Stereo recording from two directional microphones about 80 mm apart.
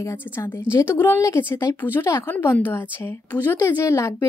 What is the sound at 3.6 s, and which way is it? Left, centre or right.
Speech, left.